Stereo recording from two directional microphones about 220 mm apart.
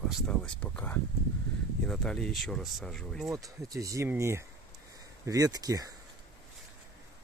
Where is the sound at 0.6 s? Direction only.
5° left (ahead or behind).